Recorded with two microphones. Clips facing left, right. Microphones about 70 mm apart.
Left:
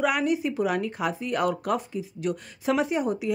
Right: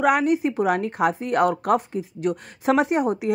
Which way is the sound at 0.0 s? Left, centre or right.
Right.